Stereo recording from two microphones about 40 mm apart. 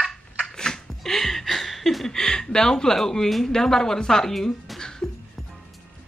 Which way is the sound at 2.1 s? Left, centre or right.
Centre.